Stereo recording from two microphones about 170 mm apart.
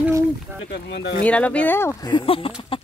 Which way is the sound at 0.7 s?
85° left.